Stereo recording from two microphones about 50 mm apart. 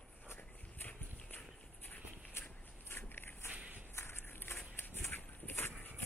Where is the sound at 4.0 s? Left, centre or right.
Left.